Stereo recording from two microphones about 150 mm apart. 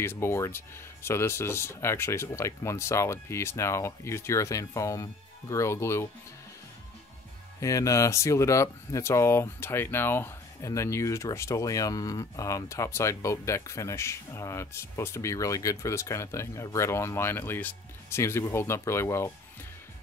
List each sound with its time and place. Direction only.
0.0 s speech: 15° left (ahead or behind)
7.6 s speech: 20° left (ahead or behind)